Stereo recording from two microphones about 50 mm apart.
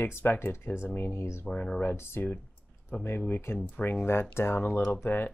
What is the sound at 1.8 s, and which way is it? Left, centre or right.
Speech, left.